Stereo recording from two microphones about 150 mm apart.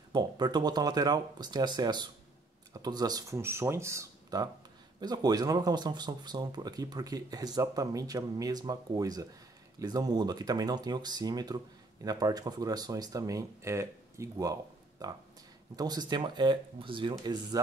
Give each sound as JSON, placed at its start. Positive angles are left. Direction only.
{"t": 0.1, "sound": "speech", "side_deg": -30}